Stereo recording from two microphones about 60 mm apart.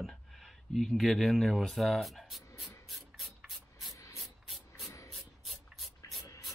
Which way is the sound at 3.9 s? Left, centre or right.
Left.